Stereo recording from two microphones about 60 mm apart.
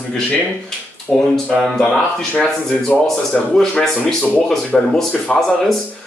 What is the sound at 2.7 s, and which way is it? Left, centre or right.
Speech, left.